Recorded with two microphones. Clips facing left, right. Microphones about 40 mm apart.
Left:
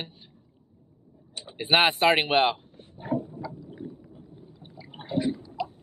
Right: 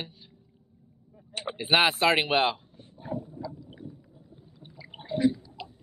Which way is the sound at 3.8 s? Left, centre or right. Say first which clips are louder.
Left 5 dB; left.